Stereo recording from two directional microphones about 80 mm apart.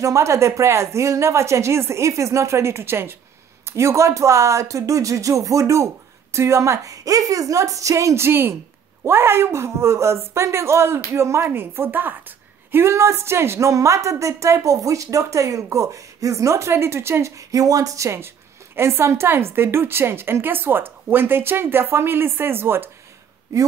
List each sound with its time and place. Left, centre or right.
0.0 s a woman's voice: right